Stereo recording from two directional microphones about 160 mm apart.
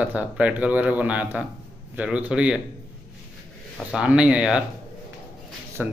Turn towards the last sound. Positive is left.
turn(degrees=-10)  # may be behind; listen again after turning